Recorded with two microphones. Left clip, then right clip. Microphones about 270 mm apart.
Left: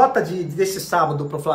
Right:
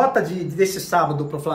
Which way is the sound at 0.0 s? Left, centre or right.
Centre.